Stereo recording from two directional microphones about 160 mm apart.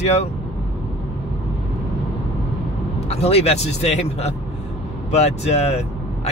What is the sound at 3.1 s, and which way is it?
Speech, 40° left (ahead or behind).